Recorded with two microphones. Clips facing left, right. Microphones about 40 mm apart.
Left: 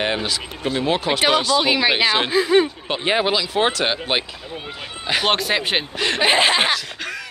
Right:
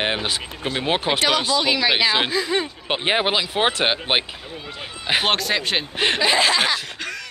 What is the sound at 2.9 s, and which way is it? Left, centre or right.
Speech, centre.